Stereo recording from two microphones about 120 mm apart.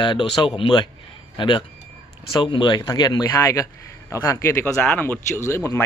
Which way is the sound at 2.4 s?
40° left (ahead or behind).